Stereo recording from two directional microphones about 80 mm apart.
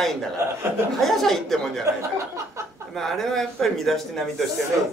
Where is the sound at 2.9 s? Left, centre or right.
Centre.